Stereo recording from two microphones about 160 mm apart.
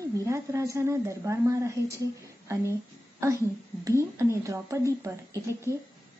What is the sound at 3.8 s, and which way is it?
A woman's voice, 20° right (ahead or behind).